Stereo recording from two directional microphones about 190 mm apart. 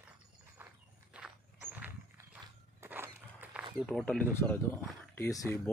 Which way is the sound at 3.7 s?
Centre (ahead or behind).